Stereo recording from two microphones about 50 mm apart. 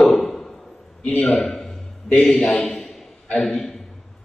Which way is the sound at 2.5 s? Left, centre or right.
Left.